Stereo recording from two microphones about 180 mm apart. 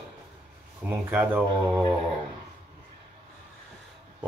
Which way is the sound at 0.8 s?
10° right (ahead or behind).